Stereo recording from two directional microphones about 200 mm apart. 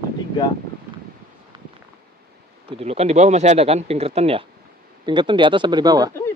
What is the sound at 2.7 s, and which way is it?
Speech, 30° right (ahead or behind).